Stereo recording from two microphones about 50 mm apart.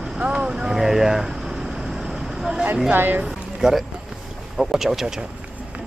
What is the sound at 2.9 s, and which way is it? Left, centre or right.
Speech, right.